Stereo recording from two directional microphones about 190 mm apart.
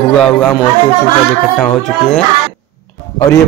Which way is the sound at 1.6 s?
5° left (ahead or behind).